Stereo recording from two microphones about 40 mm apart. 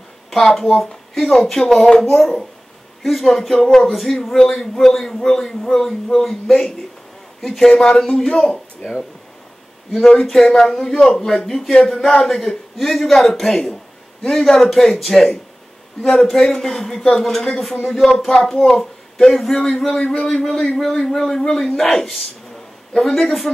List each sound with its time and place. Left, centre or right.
0.3 s a man's voice: centre
10.2 s a man's voice: centre